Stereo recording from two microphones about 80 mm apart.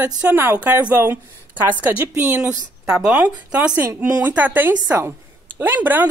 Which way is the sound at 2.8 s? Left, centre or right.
Centre.